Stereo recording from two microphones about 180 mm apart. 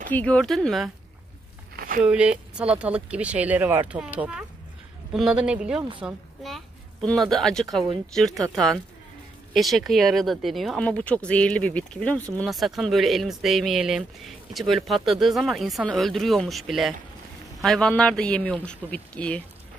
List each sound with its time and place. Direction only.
0.1 s speech: 5° left (ahead or behind)
1.8 s a sound: 50° right (ahead or behind)
2.0 s speech: 5° right (ahead or behind)